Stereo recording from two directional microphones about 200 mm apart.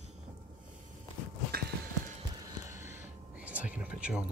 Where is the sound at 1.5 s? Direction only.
50° right (ahead or behind).